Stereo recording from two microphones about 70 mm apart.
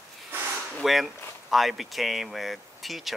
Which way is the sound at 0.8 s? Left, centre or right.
Centre.